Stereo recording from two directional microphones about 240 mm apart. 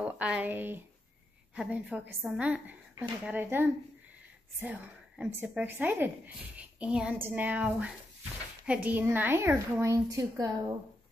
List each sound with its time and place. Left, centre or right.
0.0 s a woman's voice: centre